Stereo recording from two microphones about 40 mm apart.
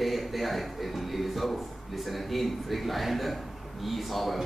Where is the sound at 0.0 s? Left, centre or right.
Centre.